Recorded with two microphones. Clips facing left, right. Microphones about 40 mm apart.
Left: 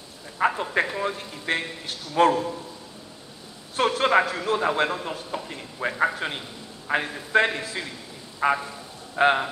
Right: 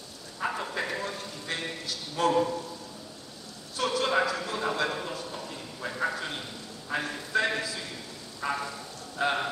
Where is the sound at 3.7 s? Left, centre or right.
Left.